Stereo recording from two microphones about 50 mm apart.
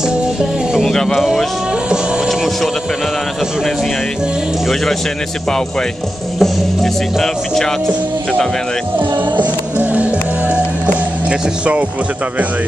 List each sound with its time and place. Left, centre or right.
0.7 s a sound: centre
1.2 s music: centre
2.2 s vehicle: centre
6.4 s speech: centre
9.4 s music: right